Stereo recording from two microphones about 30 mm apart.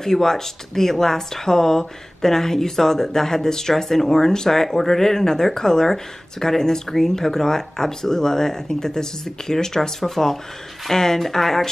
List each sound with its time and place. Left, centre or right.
0.0 s speech: centre